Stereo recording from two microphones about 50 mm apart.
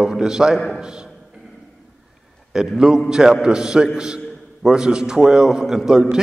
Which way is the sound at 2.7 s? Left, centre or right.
Centre.